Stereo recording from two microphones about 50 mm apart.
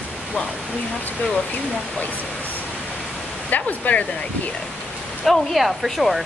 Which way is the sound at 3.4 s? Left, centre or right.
Left.